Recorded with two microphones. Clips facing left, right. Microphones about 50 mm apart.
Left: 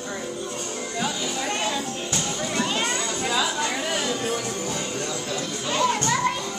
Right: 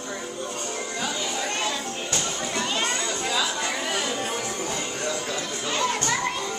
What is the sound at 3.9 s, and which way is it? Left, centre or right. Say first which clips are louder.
Music: left 2 dB; centre.